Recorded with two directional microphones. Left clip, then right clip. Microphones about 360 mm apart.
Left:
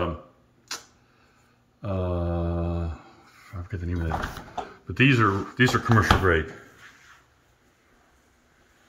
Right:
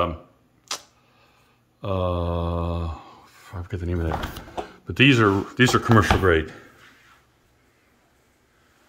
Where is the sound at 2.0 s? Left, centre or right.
Centre.